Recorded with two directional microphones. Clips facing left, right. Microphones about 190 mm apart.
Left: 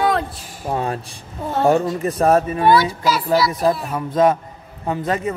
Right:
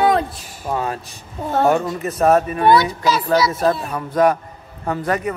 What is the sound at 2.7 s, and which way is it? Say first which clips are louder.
Speech: right 1 dB; 20° right (ahead or behind).